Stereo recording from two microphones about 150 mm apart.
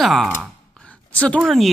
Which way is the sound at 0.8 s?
10° left (ahead or behind).